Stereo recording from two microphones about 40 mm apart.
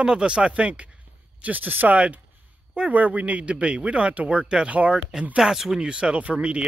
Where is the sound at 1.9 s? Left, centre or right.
Right.